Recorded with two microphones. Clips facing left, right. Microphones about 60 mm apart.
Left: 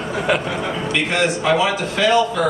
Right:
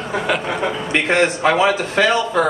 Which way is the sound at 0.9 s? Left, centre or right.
Right.